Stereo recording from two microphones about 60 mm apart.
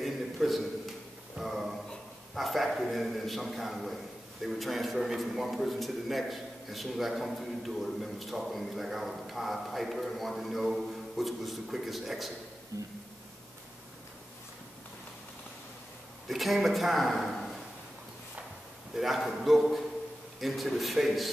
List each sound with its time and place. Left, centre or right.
0.0 s a sound: centre
2.3 s a man's voice: centre
12.7 s speech: right
16.3 s a man's voice: centre
18.9 s a man's voice: centre